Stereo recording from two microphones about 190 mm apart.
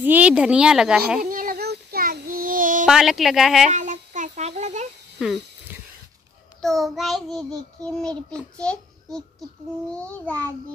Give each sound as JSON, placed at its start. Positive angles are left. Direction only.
{"t": 0.0, "sound": "child singing", "side_deg": -10}
{"t": 1.2, "sound": "child singing", "side_deg": -45}
{"t": 2.9, "sound": "child singing", "side_deg": 0}
{"t": 3.7, "sound": "child singing", "side_deg": -40}
{"t": 5.2, "sound": "a sound", "side_deg": -5}
{"t": 6.6, "sound": "child singing", "side_deg": 0}